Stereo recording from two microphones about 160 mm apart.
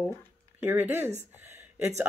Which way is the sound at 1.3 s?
15° right (ahead or behind).